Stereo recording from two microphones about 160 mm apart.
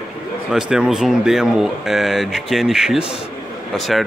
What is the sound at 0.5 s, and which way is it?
Speech, 5° right (ahead or behind).